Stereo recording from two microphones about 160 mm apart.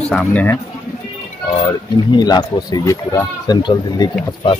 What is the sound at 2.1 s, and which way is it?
Speech, 25° left (ahead or behind).